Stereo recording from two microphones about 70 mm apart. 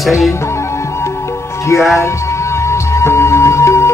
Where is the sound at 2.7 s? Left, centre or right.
Left.